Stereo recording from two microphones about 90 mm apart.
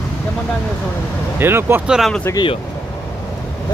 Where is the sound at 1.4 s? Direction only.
25° right (ahead or behind).